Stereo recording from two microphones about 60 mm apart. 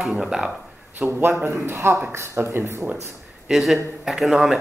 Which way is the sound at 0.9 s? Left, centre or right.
Right.